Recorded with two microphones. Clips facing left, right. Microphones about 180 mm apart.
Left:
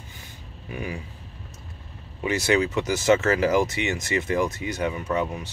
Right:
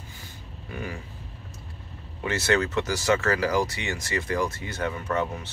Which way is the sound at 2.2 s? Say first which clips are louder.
Left 2 dB; 15° left (ahead or behind).